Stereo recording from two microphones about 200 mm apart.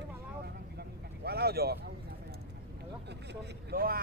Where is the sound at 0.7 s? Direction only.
50° right (ahead or behind).